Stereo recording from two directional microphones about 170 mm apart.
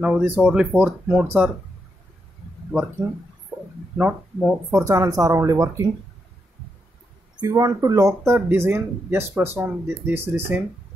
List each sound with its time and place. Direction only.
0.0 s speech: 10° right (ahead or behind)
3.0 s speech: 15° right (ahead or behind)
4.8 s speech: 20° right (ahead or behind)
7.3 s speech: 20° right (ahead or behind)